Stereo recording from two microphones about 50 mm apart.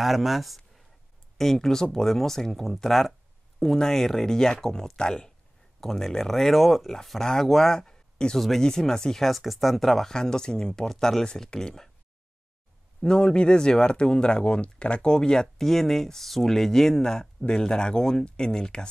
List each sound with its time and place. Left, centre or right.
0.0 s speech: centre
3.6 s speech: centre
8.4 s speech: centre
13.0 s speech: centre